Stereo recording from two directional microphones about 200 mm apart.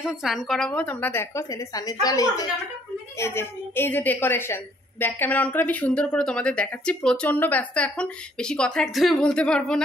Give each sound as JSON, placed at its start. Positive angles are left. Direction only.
{"t": 0.0, "sound": "a woman's voice", "side_deg": 0}